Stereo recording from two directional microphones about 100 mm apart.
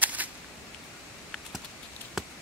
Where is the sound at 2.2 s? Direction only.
Centre (ahead or behind).